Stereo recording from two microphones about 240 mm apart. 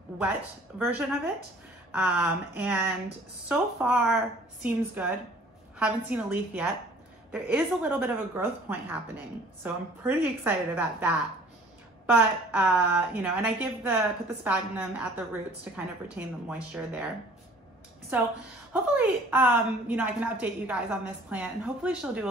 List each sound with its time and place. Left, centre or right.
0.7 s a woman's voice: centre
18.1 s a woman's voice: centre